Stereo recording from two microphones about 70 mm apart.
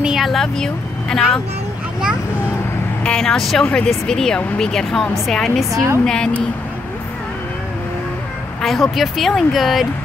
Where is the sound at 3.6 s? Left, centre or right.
Centre.